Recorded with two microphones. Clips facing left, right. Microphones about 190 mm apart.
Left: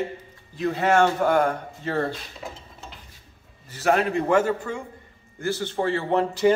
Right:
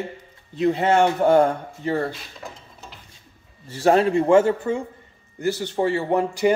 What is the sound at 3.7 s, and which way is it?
A man's voice, 30° right (ahead or behind).